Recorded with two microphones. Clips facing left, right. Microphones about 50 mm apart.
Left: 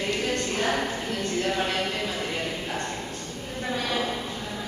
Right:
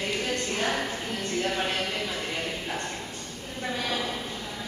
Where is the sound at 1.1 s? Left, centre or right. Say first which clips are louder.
Left 1 dB; centre.